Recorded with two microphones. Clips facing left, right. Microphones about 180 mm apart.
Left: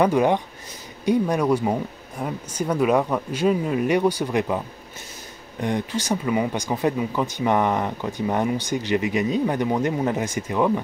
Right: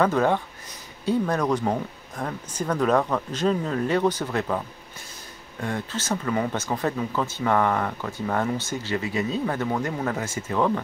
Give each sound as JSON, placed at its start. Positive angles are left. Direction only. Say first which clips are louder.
{"t": 0.0, "sound": "speech", "louder": "left 3 dB", "side_deg": 15}